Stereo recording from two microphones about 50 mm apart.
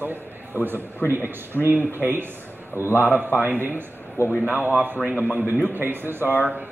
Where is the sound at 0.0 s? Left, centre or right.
Right.